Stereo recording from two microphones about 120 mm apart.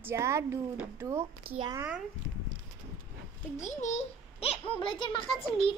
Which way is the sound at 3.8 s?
90° left.